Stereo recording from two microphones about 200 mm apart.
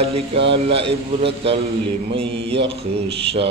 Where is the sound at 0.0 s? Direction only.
30° right (ahead or behind).